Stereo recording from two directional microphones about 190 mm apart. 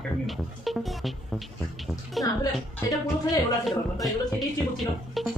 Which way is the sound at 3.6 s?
Centre (ahead or behind).